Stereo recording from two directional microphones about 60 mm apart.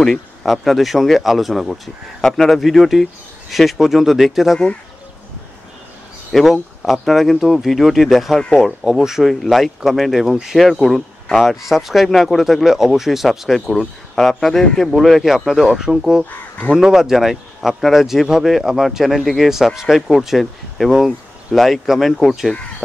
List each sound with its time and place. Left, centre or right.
0.0 s speech: centre
6.3 s speech: centre
16.3 s speech: left
16.7 s speech: centre